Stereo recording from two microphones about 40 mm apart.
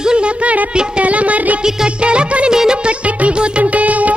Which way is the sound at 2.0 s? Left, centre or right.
Right.